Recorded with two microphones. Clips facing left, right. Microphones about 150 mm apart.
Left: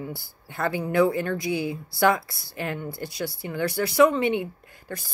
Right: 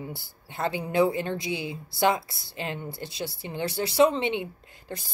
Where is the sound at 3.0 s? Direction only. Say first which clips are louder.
Left 3 dB; 25° right (ahead or behind).